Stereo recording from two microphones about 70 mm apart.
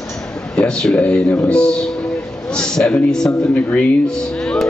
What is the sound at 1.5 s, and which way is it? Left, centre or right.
Speech, centre.